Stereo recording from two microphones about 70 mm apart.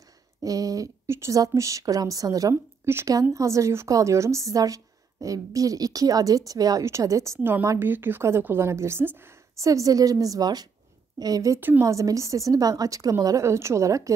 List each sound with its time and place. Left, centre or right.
0.4 s a woman's voice: right
1.0 s speech: right
1.3 s a woman's voice: right
2.5 s speech: right
3.1 s a woman's voice: right
6.8 s a woman's voice: right
7.8 s a woman's voice: right
9.6 s a woman's voice: right
11.8 s a woman's voice: right